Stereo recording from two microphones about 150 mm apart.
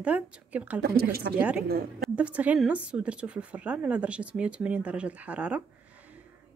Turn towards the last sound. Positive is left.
turn(degrees=-10)  # may be behind; listen again after turning